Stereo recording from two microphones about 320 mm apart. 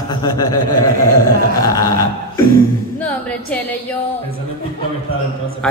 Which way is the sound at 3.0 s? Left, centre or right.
Centre.